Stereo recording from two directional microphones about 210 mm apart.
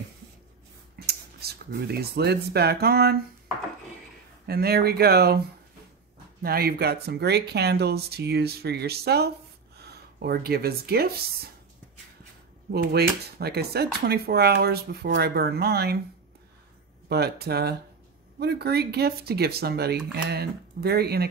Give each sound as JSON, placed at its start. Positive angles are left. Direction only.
{"t": 0.9, "sound": "speech", "side_deg": -50}
{"t": 4.5, "sound": "speech", "side_deg": -50}
{"t": 6.4, "sound": "speech", "side_deg": -45}
{"t": 12.7, "sound": "speech", "side_deg": -50}
{"t": 17.1, "sound": "speech", "side_deg": -50}